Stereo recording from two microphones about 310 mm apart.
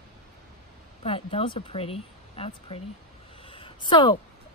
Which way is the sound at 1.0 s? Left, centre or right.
Centre.